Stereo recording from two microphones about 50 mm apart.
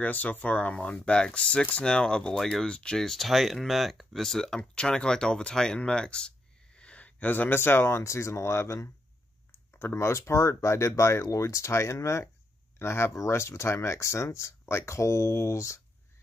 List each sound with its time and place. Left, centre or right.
0.0 s speech: left
3.0 s speech: centre
4.2 s speech: centre; by 8.0 s left
8.0 s speech: left
12.7 s speech: left